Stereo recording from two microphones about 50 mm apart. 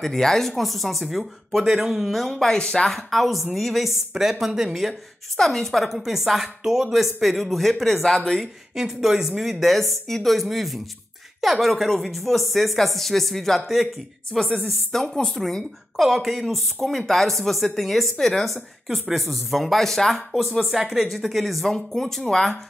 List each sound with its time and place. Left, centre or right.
0.0 s speech: centre
2.1 s speech: centre
2.9 s speech: centre
5.4 s speech: centre
8.4 s speech: centre
14.3 s speech: centre